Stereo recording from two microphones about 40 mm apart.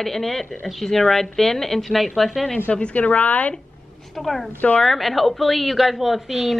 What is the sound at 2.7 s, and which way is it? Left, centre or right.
Speech, left.